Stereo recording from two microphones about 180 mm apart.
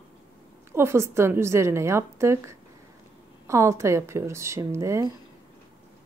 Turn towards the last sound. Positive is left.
turn(degrees=-15)  # may be behind; listen again after turning